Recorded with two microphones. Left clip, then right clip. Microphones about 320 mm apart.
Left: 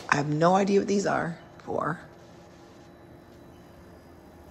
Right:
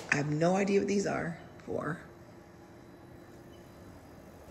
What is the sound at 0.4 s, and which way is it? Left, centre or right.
Speech, centre.